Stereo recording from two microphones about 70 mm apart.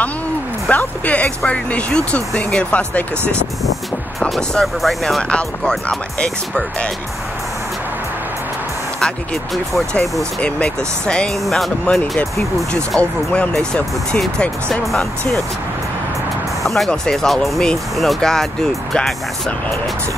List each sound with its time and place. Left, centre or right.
0.7 s speech: left; by 5.2 s centre
5.3 s speech: centre
9.0 s speech: centre
11.4 s speech: centre
11.8 s speech: centre
16.6 s speech: centre